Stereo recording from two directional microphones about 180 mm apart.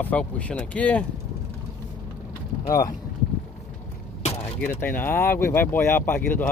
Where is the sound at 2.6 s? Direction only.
20° left (ahead or behind).